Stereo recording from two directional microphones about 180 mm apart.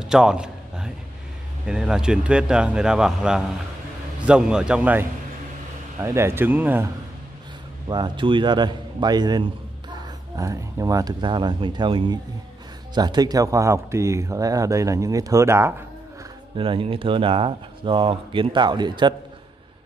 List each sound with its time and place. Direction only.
0.0 s a sound: 5° right (ahead or behind)
1.7 s speech: 5° right (ahead or behind)
7.9 s speech: 25° right (ahead or behind)
16.5 s speech: 30° right (ahead or behind)